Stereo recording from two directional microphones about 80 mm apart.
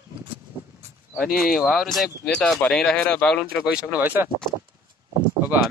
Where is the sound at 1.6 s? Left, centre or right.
Centre.